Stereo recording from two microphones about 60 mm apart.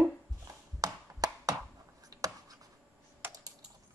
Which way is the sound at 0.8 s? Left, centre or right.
Right.